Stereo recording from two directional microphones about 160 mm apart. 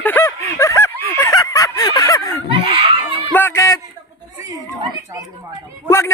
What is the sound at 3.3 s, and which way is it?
Speech, 15° left (ahead or behind).